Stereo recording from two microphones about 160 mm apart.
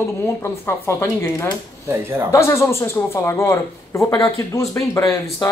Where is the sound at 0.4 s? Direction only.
15° left (ahead or behind).